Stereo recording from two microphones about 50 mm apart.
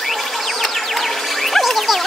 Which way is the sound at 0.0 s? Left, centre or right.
Centre.